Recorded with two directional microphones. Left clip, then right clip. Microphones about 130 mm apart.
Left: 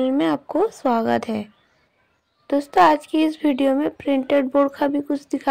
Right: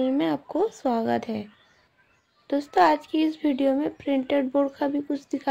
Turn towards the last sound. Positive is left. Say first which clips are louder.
# left 5 dB
turn(degrees=40)  # may be behind; listen again after turning